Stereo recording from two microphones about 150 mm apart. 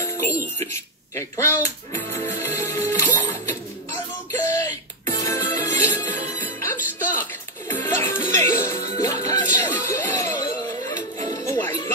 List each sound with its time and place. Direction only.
1.1 s music: 20° left (ahead or behind)
4.5 s music: 20° left (ahead or behind)